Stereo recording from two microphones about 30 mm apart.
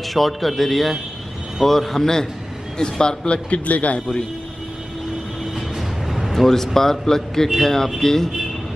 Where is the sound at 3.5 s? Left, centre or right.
Left.